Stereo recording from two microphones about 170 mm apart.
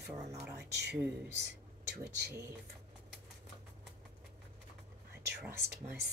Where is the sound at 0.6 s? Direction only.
75° right (ahead or behind).